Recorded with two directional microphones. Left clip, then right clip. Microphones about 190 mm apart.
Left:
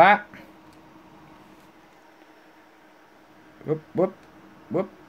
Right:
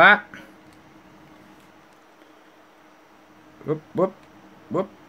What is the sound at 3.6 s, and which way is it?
Speech, 5° right (ahead or behind).